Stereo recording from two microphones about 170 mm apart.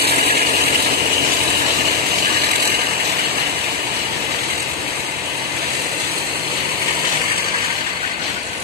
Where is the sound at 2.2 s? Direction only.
70° right (ahead or behind).